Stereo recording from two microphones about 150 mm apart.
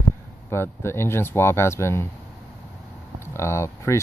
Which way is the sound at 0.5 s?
15° left (ahead or behind).